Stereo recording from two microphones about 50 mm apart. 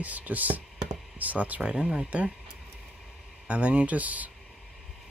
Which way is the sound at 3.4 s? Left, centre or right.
Right.